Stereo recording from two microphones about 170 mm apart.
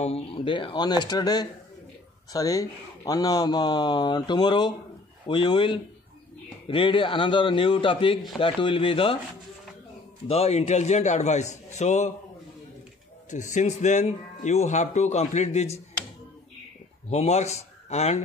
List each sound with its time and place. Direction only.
0.0 s a man's voice: 35° left (ahead or behind)
10.2 s a man's voice: 35° left (ahead or behind)
13.3 s a man's voice: 45° left (ahead or behind)
17.1 s speech: 40° left (ahead or behind)